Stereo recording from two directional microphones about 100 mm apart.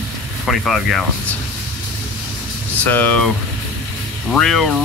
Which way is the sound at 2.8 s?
20° left (ahead or behind).